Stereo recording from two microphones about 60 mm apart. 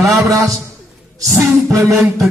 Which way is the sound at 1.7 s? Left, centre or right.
Right.